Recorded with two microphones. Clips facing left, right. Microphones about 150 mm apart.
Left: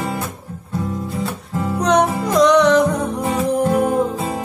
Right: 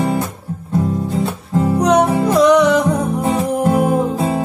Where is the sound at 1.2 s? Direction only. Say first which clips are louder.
Right 6 dB; 30° right (ahead or behind).